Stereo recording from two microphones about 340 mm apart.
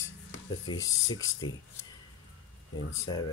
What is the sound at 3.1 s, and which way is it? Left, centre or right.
Speech, centre.